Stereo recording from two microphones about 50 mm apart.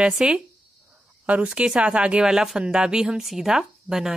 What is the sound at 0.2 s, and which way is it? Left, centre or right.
Speech, centre.